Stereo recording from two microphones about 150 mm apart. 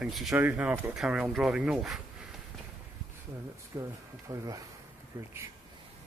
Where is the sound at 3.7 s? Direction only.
20° right (ahead or behind).